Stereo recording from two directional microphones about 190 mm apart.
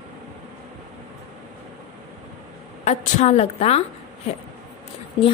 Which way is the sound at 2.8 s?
35° left (ahead or behind).